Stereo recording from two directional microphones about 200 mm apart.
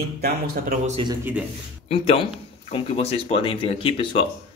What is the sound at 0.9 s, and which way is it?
Speech, 20° right (ahead or behind).